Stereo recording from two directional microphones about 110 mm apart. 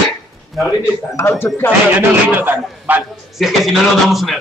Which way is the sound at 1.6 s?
20° left (ahead or behind).